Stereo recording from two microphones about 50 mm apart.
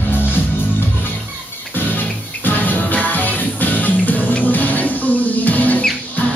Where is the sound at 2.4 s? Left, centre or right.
Left.